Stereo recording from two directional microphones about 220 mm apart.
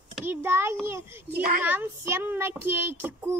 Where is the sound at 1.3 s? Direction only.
40° right (ahead or behind).